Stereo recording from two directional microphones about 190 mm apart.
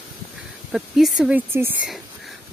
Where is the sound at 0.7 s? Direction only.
Centre (ahead or behind).